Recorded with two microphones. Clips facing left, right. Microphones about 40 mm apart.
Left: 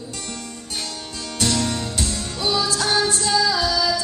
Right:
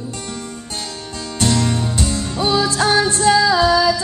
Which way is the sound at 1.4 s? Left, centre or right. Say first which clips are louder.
Right 5 dB; centre.